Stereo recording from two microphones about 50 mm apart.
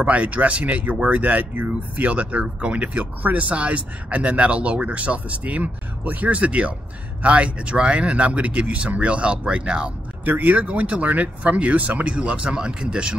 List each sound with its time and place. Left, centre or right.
0.0 s speech: right
10.2 s speech: right; by 13.1 s centre